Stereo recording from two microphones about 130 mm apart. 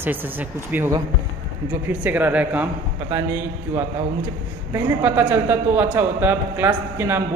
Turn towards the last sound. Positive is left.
turn(degrees=-20)  # may be behind; listen again after turning